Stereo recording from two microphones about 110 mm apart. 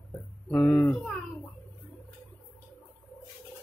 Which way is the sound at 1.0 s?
10° left (ahead or behind).